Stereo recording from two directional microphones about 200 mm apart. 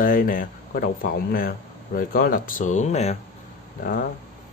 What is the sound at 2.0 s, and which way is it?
Speech, 45° left (ahead or behind).